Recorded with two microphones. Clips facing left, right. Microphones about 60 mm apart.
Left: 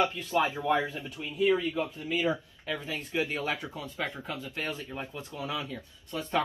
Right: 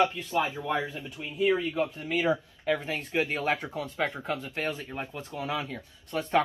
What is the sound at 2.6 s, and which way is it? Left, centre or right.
Speech, right.